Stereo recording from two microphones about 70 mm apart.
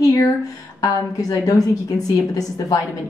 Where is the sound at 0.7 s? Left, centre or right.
Left.